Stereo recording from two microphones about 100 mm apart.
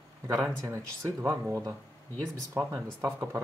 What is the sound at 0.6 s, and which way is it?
Speech, 30° right (ahead or behind).